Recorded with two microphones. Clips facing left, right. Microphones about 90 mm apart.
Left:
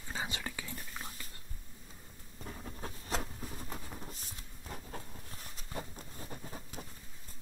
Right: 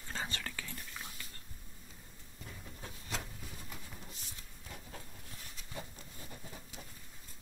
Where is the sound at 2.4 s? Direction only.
40° left (ahead or behind).